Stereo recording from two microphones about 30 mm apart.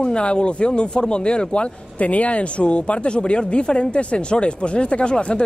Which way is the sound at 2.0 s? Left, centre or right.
Left.